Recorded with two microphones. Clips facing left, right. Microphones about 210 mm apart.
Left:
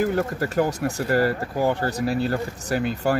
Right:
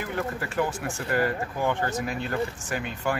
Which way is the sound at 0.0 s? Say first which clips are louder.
Left 8 dB; 40° left (ahead or behind).